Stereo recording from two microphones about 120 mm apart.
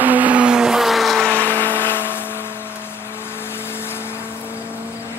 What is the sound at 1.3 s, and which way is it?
Vehicle, 15° left (ahead or behind).